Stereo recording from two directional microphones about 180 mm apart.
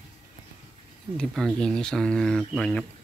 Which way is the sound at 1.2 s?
5° left (ahead or behind).